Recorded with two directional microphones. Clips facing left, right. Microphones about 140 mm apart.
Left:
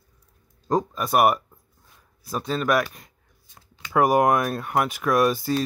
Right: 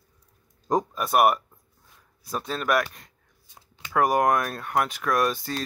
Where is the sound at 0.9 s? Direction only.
Centre (ahead or behind).